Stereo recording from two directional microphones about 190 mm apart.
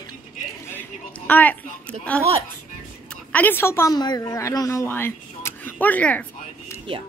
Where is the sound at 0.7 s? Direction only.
10° left (ahead or behind).